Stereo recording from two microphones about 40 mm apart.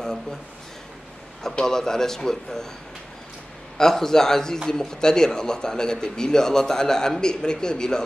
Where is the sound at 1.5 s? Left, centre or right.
Centre.